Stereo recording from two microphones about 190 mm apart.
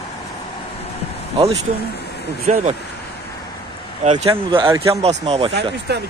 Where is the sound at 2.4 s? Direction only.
35° right (ahead or behind).